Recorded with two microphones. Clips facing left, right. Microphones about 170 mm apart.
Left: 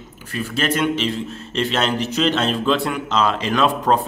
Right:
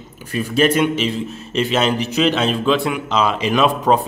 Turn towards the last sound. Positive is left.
turn(degrees=-15)  # may be behind; listen again after turning